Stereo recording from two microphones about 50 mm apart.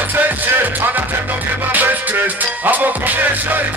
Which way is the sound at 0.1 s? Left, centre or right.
Right.